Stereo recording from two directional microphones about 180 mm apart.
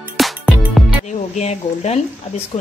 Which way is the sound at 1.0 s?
40° left (ahead or behind).